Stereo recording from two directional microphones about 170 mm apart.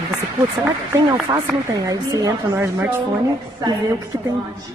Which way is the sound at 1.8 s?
20° right (ahead or behind).